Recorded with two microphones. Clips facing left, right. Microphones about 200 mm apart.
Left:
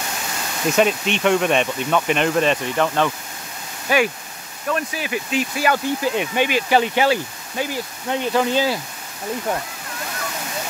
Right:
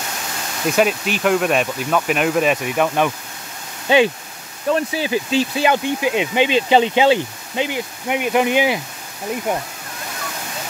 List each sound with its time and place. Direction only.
0.7 s speech: 5° right (ahead or behind)
3.9 s speech: 25° right (ahead or behind)